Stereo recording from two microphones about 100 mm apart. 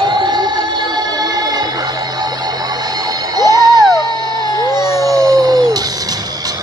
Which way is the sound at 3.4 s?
40° right (ahead or behind).